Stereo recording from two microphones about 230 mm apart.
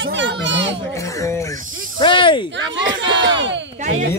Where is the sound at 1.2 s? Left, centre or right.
Centre.